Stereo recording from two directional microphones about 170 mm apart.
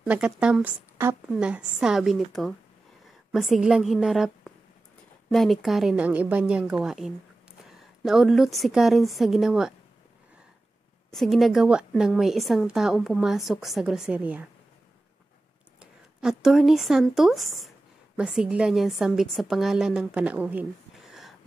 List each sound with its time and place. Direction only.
0.0 s a woman's voice: 5° right (ahead or behind)
11.1 s a woman's voice: centre (ahead or behind)
16.2 s a woman's voice: 5° right (ahead or behind)